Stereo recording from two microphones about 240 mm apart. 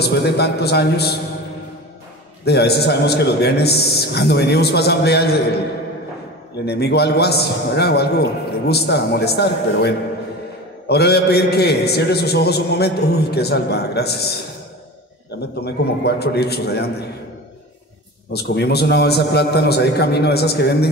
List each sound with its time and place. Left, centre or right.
0.0 s a man's voice: left
2.4 s a man's voice: left
6.6 s a man's voice: left
15.6 s a man's voice: left
18.3 s a man's voice: left